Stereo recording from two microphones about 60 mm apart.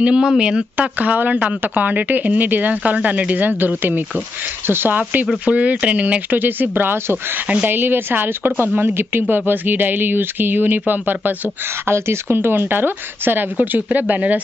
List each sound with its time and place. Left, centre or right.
0.0 s speech: centre
0.7 s speech: right
11.8 s speech: right